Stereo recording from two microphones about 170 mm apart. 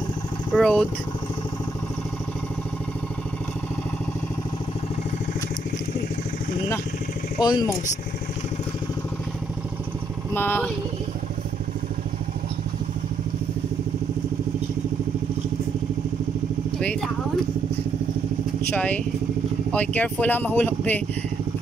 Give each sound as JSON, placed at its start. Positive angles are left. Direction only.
{"t": 0.5, "sound": "speech", "side_deg": 5}
{"t": 7.3, "sound": "speech", "side_deg": 25}
{"t": 10.3, "sound": "speech", "side_deg": 10}
{"t": 19.7, "sound": "speech", "side_deg": 10}